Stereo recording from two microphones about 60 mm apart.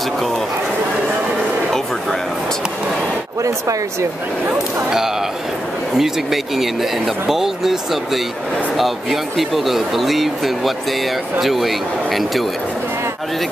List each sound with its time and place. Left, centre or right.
3.4 s speech: right
5.9 s speech: centre